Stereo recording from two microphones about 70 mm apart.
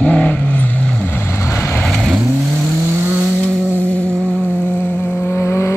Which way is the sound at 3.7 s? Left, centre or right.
Left.